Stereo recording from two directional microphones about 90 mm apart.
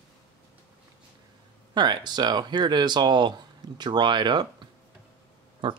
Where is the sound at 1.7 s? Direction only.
55° right (ahead or behind).